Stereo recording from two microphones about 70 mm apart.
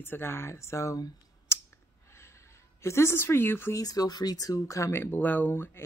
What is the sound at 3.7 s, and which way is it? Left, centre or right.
Speech, left.